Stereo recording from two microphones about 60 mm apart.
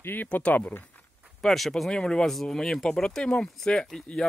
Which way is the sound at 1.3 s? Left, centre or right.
Centre.